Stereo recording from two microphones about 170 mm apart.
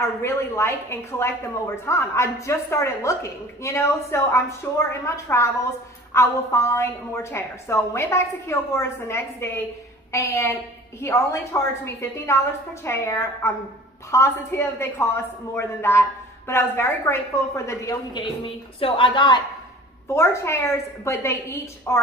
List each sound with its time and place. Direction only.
0.2 s a woman's voice: 15° left (ahead or behind)
20.2 s a woman's voice: 15° left (ahead or behind)